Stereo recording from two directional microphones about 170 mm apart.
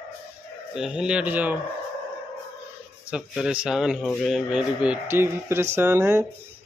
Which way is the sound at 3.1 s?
5° right (ahead or behind).